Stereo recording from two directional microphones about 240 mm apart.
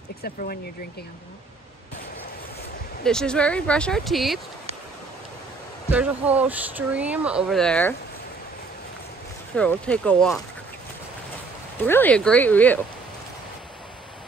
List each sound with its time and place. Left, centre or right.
0.2 s speech: left
3.0 s speech: centre
5.9 s speech: centre
9.6 s speech: centre
11.8 s speech: centre